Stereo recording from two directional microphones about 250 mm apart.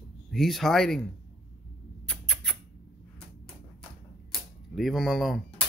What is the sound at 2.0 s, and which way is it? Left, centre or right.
Rodents, centre.